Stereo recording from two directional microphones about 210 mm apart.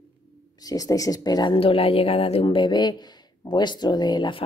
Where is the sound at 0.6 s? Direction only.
15° left (ahead or behind).